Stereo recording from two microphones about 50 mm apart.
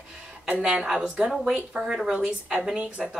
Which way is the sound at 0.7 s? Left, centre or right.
Centre.